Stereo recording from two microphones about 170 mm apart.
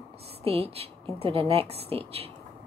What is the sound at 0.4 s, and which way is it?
A woman's voice, 35° right (ahead or behind).